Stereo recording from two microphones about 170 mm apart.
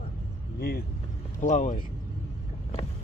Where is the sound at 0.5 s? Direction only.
65° left (ahead or behind).